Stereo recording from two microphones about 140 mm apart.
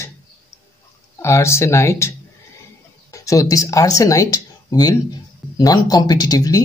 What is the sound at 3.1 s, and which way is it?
Speech, 25° left (ahead or behind).